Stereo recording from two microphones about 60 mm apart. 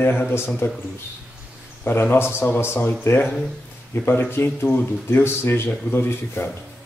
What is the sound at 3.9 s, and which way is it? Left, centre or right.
Speech, left.